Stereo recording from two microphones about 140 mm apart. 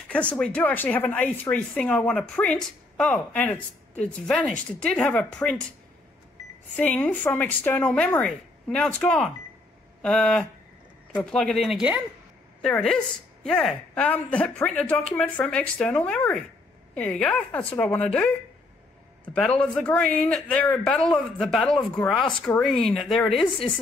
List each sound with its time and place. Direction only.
0.1 s a man's voice: 10° left (ahead or behind)
6.8 s a man's voice: 10° left (ahead or behind)
12.6 s a man's voice: 5° left (ahead or behind)